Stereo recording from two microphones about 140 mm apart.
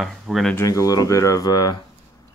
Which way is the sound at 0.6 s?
25° left (ahead or behind).